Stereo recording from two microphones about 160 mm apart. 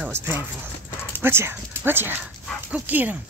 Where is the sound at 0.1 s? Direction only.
15° right (ahead or behind).